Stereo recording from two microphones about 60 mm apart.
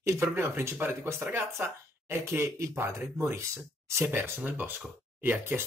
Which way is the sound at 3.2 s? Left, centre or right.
Right.